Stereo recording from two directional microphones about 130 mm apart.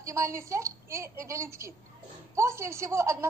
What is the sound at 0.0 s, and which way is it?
A woman's voice, 25° right (ahead or behind).